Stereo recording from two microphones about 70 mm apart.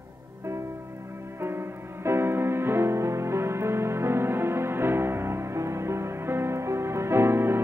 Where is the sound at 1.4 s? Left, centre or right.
Right.